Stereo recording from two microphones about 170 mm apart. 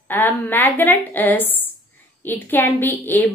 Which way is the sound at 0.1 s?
10° left (ahead or behind).